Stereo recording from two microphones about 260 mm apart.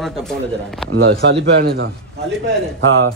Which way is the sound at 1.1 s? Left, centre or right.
Right.